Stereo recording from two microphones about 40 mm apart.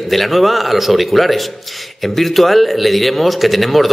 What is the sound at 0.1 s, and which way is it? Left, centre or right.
A man's voice, centre.